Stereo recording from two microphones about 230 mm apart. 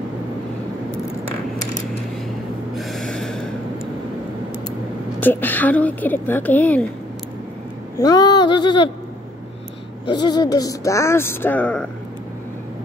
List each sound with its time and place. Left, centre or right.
2.7 s snort: centre
5.2 s speech: centre
8.0 s speech: centre
10.0 s speech: centre